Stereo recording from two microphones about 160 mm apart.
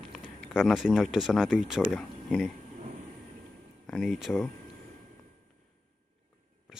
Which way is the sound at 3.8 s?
5° left (ahead or behind).